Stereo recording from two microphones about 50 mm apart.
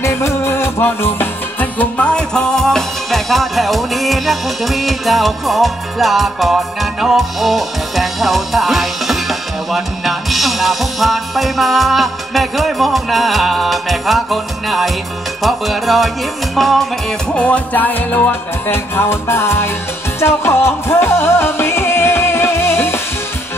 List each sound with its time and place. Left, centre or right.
0.0 s music: left
1.8 s music: left; by 16.8 s centre
17.3 s music: left
17.7 s music: left